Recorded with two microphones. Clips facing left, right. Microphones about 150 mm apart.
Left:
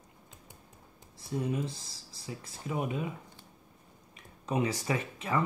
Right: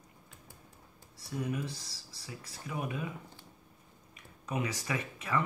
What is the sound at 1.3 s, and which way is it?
Speech, 25° left (ahead or behind).